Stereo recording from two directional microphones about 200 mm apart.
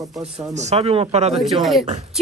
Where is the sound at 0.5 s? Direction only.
35° right (ahead or behind).